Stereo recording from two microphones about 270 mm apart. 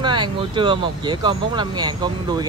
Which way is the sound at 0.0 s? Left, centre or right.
Centre.